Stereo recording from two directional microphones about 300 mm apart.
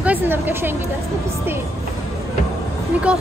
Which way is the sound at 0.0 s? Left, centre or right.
Centre.